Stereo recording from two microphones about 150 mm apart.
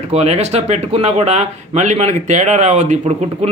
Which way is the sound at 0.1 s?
45° right (ahead or behind).